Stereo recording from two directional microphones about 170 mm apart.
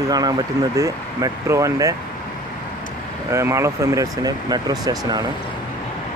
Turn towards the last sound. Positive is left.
turn(degrees=-25)  # may be behind; listen again after turning